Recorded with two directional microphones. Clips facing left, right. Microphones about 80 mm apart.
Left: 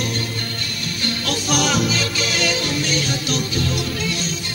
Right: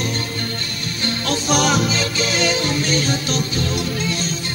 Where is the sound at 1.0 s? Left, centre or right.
Right.